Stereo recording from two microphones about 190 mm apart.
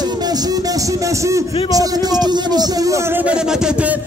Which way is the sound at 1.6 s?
20° right (ahead or behind).